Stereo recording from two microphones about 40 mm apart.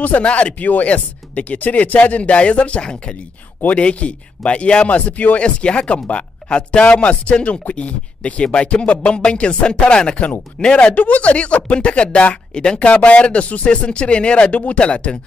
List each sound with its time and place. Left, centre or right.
0.2 s speech: left
5.4 s speech: left
10.8 s speech: left